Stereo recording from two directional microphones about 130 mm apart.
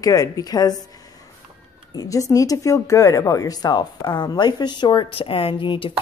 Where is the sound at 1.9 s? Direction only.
25° left (ahead or behind).